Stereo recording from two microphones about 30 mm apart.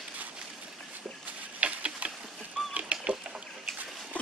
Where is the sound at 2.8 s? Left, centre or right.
Right.